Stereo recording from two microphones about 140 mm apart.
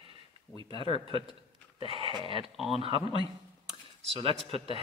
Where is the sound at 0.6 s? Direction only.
35° right (ahead or behind).